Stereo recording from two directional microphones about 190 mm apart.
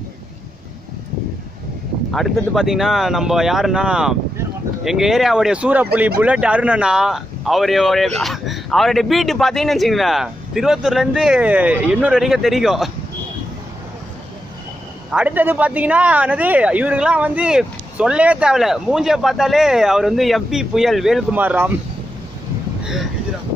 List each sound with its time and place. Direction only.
2.1 s speech: centre (ahead or behind)
15.0 s speech: 5° right (ahead or behind)